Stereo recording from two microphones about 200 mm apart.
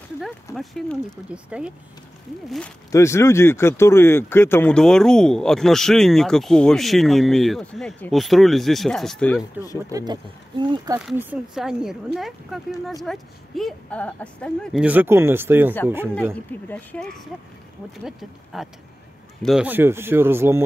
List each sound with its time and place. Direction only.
0.6 s speech: centre (ahead or behind)
2.9 s speech: 15° left (ahead or behind)
9.4 s speech: 15° left (ahead or behind)
9.8 s speech: 15° right (ahead or behind)
11.0 s speech: 5° right (ahead or behind)
16.6 s speech: 5° left (ahead or behind); by 20.6 s 10° right (ahead or behind)